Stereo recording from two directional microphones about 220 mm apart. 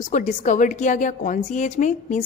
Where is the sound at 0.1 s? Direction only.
35° left (ahead or behind).